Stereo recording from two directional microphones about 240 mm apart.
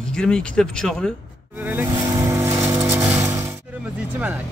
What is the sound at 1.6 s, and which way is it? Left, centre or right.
Vehicle, centre.